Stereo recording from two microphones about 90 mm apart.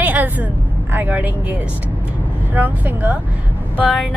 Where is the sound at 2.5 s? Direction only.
20° right (ahead or behind).